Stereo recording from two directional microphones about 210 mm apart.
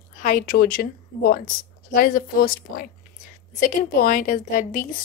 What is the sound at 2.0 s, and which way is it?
Speech, 40° left (ahead or behind).